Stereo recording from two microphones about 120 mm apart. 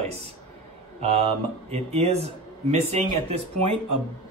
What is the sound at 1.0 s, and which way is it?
Speech, 60° right (ahead or behind).